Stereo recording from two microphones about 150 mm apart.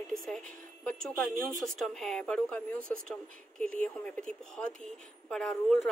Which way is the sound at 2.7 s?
65° right (ahead or behind).